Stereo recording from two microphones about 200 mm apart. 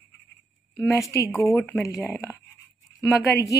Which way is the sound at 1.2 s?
15° left (ahead or behind).